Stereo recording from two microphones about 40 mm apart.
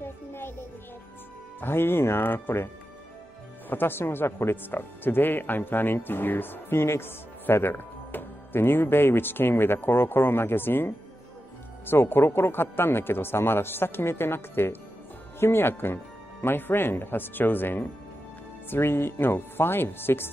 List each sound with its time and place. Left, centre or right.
0.0 s music: left
1.6 s speech: left
3.7 s speech: left
18.7 s speech: left